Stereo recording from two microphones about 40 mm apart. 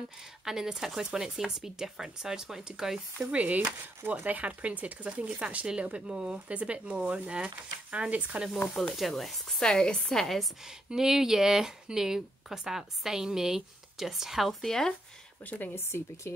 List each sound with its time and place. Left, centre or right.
0.5 s speech: centre
3.2 s speech: right
8.8 s speech: centre
9.6 s a woman's voice: centre
10.2 s speech: centre
10.6 s speech: centre
14.7 s speech: centre
15.4 s speech: left
15.7 s speech: left